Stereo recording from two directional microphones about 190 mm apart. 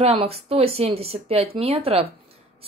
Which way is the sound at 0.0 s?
30° right (ahead or behind).